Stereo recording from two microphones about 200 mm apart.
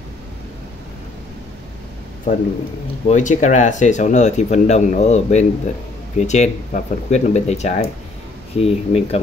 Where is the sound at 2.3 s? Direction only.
35° left (ahead or behind).